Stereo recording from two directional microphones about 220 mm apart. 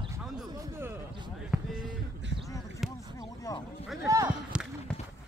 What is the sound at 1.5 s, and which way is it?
Basketball bounce, 5° right (ahead or behind).